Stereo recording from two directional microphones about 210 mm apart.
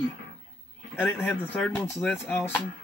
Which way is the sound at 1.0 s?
5° left (ahead or behind).